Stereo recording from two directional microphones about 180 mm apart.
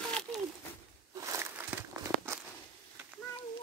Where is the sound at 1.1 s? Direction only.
20° right (ahead or behind).